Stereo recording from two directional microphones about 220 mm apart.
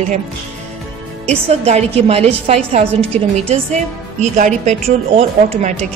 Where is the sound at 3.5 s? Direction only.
30° right (ahead or behind).